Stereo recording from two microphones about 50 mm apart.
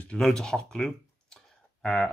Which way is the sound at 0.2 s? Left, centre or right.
Centre.